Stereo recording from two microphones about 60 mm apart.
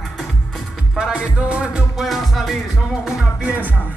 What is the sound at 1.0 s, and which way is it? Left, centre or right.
Music, centre.